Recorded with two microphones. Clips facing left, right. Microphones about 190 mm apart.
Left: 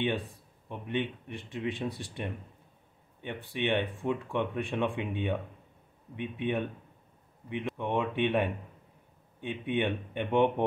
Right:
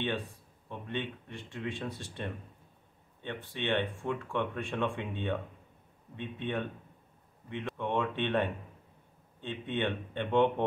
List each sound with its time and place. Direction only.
0.7 s speech: 15° left (ahead or behind)
3.4 s speech: 15° left (ahead or behind)